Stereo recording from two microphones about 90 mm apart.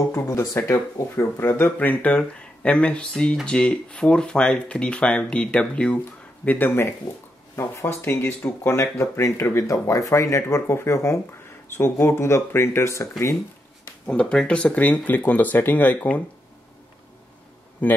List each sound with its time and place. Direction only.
0.1 s speech: 35° left (ahead or behind); by 5.9 s 10° left (ahead or behind)
6.4 s speech: 20° left (ahead or behind)
14.0 s speech: 10° left (ahead or behind)
17.8 s speech: 20° left (ahead or behind)